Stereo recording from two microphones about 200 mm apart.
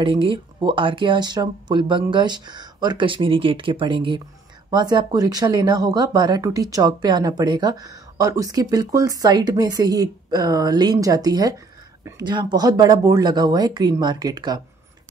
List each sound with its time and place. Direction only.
0.0 s speech: 25° right (ahead or behind)